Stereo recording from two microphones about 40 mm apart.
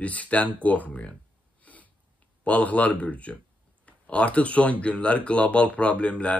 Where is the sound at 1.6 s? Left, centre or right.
Left.